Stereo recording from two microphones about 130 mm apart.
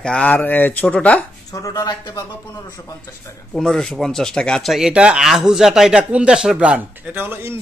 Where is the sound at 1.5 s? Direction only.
25° left (ahead or behind).